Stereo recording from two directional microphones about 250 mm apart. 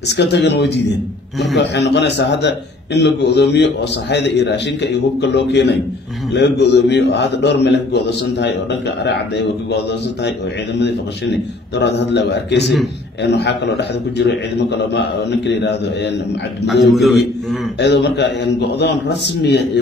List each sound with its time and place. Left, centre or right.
0.1 s a man's voice: left
10.8 s a man's voice: left
16.9 s a man's voice: centre
17.7 s a man's voice: left